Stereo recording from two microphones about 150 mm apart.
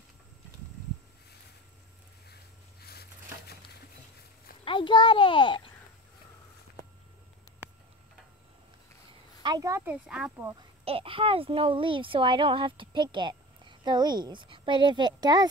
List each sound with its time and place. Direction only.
2.2 s a sound: 90° left
4.6 s a child's voice: 35° left (ahead or behind)
9.4 s speech: 25° right (ahead or behind)
10.0 s speech: 5° right (ahead or behind)
10.9 s a child's voice: 35° right (ahead or behind)